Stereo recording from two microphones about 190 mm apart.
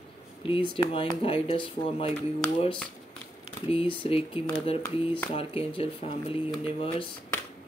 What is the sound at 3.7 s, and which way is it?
Speech, 30° left (ahead or behind).